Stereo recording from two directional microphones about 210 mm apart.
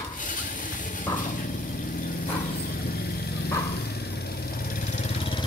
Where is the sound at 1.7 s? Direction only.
45° left (ahead or behind); by 5.4 s 25° left (ahead or behind).